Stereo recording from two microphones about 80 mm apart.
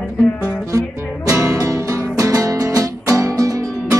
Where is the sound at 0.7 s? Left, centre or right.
Right.